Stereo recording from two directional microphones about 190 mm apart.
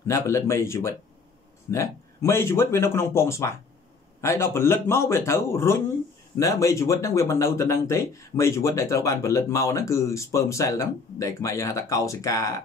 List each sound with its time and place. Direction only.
0.0 s speech: 15° left (ahead or behind)